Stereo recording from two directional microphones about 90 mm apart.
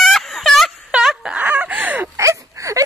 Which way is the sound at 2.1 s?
35° right (ahead or behind).